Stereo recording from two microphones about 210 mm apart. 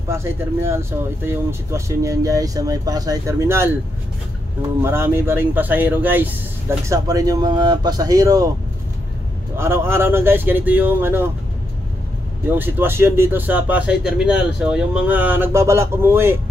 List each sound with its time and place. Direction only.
0.1 s speech: 10° right (ahead or behind)
4.8 s speech: 10° right (ahead or behind)
9.6 s speech: 10° right (ahead or behind)
12.5 s speech: 10° right (ahead or behind)